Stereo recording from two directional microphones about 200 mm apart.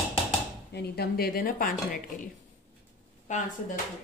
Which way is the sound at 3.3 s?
35° left (ahead or behind).